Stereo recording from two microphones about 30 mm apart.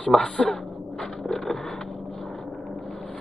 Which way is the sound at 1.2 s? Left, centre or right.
Centre.